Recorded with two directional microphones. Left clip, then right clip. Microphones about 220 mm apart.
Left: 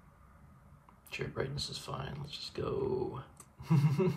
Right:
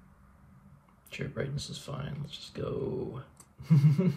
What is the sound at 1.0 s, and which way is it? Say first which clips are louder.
Speech: right 1 dB; 20° left (ahead or behind).